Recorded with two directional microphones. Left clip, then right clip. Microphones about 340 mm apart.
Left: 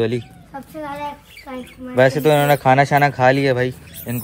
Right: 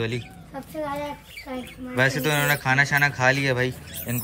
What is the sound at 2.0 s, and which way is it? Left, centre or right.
A man's voice, centre.